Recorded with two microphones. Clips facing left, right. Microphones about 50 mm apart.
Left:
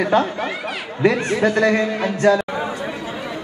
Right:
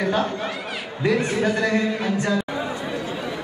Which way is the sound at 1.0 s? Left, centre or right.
Left.